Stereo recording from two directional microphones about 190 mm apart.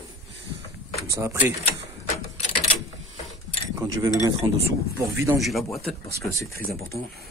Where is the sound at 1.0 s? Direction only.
15° right (ahead or behind).